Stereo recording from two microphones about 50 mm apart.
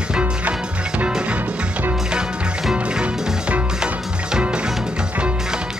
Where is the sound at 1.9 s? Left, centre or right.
Centre.